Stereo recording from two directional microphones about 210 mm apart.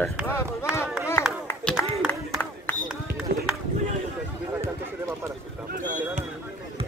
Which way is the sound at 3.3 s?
45° right (ahead or behind).